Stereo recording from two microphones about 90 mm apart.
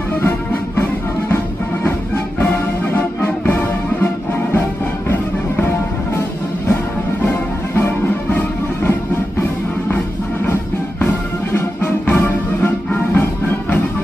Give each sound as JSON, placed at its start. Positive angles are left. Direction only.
{"t": 2.9, "sound": "music", "side_deg": 20}
{"t": 7.7, "sound": "music", "side_deg": 25}
{"t": 10.4, "sound": "music", "side_deg": 25}